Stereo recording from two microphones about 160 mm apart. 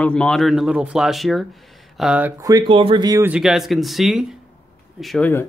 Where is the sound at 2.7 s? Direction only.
35° right (ahead or behind).